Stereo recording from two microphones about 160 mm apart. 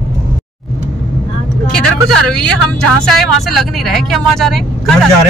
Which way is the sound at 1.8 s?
5° left (ahead or behind).